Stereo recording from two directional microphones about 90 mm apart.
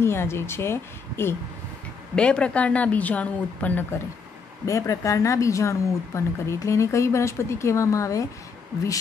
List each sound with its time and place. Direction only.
0.0 s speech: 30° left (ahead or behind)
2.1 s a woman's voice: 10° left (ahead or behind)
4.6 s speech: 35° left (ahead or behind)